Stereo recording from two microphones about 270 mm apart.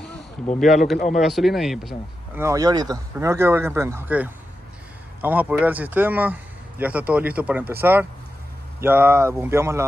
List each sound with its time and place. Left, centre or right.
0.9 s speech: left
1.2 s speech: centre